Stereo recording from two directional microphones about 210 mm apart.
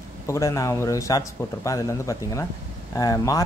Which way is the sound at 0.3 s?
15° left (ahead or behind).